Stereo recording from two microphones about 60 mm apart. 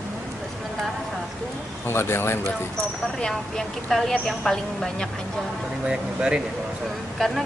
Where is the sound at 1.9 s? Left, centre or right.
Left.